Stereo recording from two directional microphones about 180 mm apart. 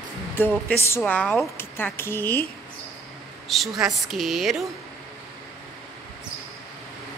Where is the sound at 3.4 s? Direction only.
Centre (ahead or behind).